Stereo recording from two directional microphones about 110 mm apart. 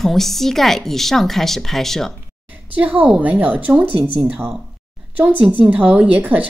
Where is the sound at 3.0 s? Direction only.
10° right (ahead or behind).